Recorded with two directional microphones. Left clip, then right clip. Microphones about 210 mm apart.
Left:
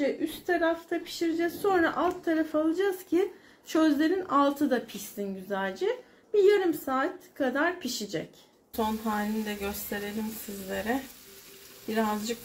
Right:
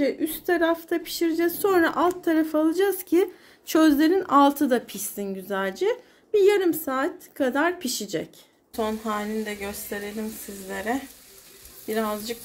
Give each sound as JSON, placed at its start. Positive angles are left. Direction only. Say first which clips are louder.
{"t": 0.0, "sound": "a woman's voice", "louder": "right 4 dB", "side_deg": -60}
{"t": 8.7, "sound": "a woman's voice", "louder": "right 3 dB", "side_deg": -15}